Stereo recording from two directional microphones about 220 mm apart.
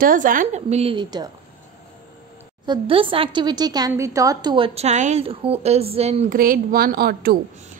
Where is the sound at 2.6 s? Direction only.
20° right (ahead or behind).